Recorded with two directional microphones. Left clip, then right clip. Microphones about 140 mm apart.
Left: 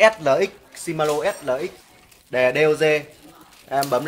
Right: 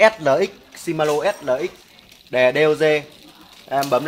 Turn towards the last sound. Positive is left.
turn(degrees=-25)  # may be behind; listen again after turning